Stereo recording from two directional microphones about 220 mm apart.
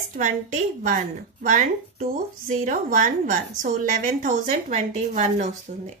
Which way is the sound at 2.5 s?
35° right (ahead or behind).